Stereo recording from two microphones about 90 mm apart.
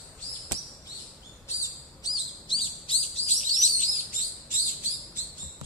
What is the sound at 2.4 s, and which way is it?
Chirp, 65° left (ahead or behind).